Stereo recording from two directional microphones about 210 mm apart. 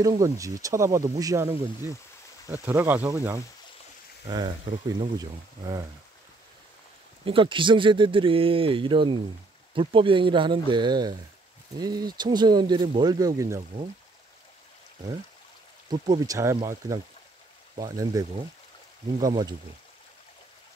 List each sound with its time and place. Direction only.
0.0 s speech: 15° right (ahead or behind)
7.2 s speech: 25° right (ahead or behind)
15.9 s speech: 20° right (ahead or behind)